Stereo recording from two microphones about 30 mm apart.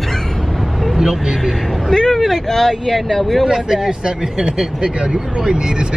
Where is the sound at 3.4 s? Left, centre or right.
Centre.